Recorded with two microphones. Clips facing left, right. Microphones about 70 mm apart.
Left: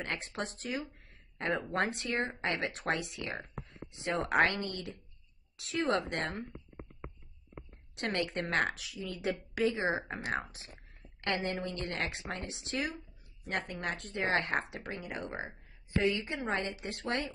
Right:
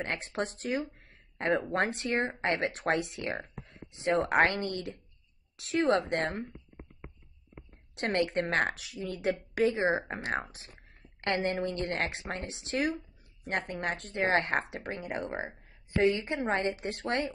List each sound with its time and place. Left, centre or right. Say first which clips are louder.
0.0 s a woman's voice: right 4 dB; right
0.9 s a sound: right 4 dB; right
1.7 s a woman's voice: right 3 dB; right
8.0 s a woman's voice: right 5 dB; right